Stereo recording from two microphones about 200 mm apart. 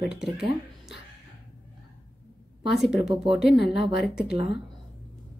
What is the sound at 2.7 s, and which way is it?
Speech, centre (ahead or behind).